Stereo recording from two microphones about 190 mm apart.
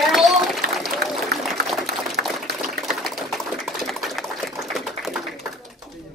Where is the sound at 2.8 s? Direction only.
Centre (ahead or behind).